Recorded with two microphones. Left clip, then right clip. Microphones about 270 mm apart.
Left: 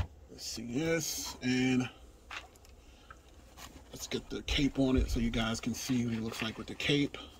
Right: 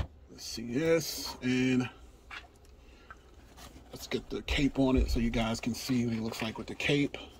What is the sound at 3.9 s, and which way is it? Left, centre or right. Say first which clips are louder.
Speech: right 3 dB; centre.